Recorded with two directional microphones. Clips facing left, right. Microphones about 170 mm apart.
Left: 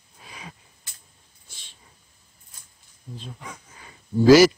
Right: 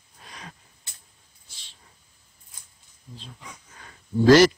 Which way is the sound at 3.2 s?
55° left (ahead or behind).